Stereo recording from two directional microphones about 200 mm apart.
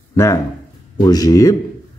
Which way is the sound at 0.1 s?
15° left (ahead or behind).